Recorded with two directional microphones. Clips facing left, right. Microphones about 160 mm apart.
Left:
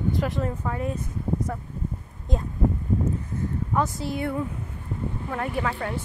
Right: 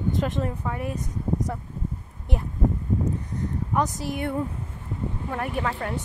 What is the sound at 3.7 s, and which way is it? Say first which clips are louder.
Speech: even; 15° right (ahead or behind).